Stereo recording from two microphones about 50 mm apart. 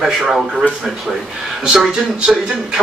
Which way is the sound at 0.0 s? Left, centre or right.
Centre.